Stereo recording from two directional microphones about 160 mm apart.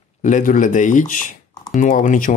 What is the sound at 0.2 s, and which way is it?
Speech, 50° left (ahead or behind).